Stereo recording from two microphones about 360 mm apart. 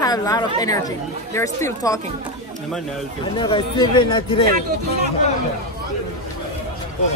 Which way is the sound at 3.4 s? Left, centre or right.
Centre.